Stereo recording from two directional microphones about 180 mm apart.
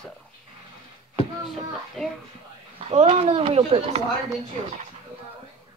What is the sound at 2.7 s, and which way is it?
Speech, 35° right (ahead or behind).